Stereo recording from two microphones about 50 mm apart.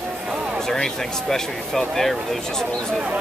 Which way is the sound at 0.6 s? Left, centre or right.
Centre.